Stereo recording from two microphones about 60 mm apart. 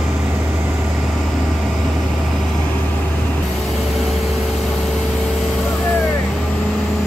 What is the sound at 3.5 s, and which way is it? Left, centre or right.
Vehicle, centre.